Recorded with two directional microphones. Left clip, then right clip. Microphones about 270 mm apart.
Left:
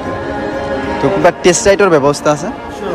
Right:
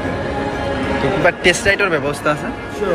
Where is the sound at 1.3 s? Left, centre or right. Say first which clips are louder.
Left 4 dB; centre.